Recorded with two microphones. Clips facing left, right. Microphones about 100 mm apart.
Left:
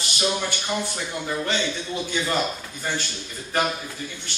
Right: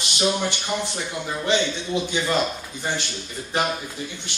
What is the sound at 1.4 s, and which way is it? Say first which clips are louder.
Speech: right 7 dB; 20° right (ahead or behind).